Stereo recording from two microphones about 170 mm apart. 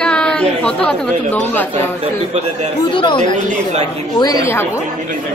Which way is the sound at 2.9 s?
30° left (ahead or behind).